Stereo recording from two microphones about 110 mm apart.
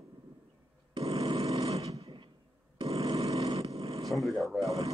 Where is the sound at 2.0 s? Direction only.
55° right (ahead or behind).